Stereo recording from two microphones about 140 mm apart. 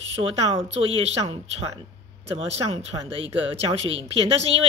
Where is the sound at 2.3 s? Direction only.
45° right (ahead or behind).